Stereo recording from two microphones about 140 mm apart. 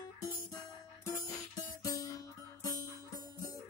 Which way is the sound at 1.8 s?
25° left (ahead or behind).